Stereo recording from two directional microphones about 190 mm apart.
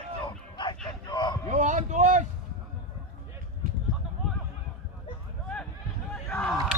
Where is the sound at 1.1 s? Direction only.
20° left (ahead or behind).